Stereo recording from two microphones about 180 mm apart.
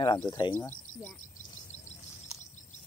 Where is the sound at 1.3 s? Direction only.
40° left (ahead or behind).